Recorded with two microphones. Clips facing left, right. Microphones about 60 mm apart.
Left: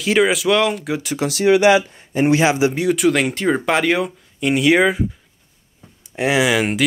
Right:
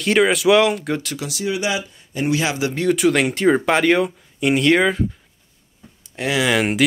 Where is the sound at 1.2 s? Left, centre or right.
Left.